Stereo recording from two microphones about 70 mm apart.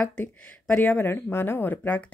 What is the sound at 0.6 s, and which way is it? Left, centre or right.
Speech, left.